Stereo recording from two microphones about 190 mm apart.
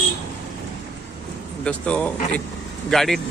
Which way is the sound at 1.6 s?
5° left (ahead or behind).